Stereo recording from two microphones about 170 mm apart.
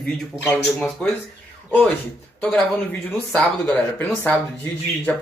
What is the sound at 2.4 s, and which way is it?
A man's voice, 5° left (ahead or behind).